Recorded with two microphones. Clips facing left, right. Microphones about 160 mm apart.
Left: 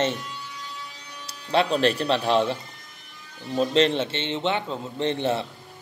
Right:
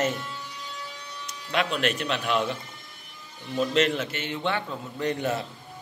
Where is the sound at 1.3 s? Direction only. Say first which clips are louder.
Left 5 dB; 30° left (ahead or behind).